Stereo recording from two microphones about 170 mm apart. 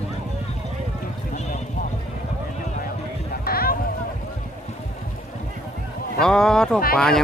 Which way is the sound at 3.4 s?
60° left (ahead or behind).